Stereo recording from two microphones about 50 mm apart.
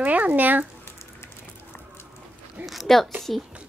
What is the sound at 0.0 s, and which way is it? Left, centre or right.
Speech, right.